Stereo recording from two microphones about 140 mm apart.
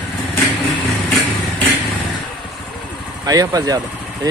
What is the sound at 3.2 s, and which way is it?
Speech, 25° right (ahead or behind).